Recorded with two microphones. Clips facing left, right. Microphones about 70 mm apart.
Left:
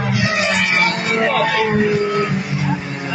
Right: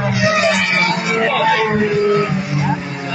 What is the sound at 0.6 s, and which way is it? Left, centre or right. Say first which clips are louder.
Music: even; centre.